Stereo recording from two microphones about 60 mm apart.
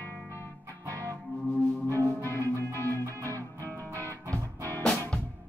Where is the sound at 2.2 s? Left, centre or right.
Left.